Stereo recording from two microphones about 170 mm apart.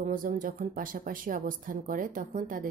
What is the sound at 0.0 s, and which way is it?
Speech, 50° right (ahead or behind).